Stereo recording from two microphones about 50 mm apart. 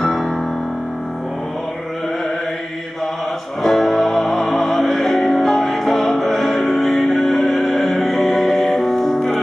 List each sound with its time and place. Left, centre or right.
0.0 s music: centre
3.6 s music: centre